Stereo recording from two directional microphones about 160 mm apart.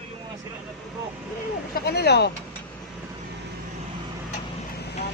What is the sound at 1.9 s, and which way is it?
Speech, 90° left.